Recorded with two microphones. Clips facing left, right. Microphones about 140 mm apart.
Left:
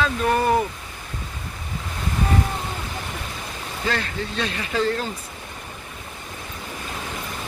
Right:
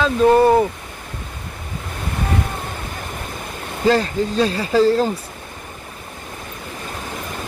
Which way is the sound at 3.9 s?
35° right (ahead or behind).